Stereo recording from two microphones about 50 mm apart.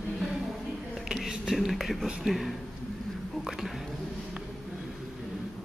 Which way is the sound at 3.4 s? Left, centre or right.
Centre.